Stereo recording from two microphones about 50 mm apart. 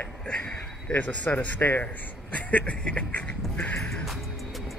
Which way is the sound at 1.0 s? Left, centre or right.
Left.